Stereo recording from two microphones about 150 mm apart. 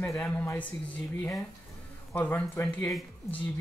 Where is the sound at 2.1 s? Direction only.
15° left (ahead or behind).